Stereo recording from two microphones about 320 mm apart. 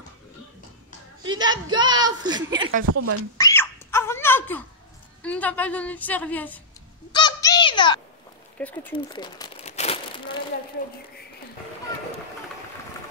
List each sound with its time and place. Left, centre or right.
1.2 s a woman's voice: centre
2.8 s speech: right
3.3 s a sound: centre
5.2 s a woman's voice: centre
7.1 s a sound: centre
8.5 s a woman's voice: centre
8.9 s crumpling: centre